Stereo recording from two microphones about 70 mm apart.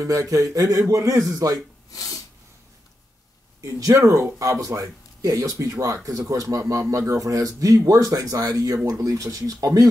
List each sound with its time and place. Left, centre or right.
0.0 s speech: right
1.9 s snort: left
3.6 s speech: right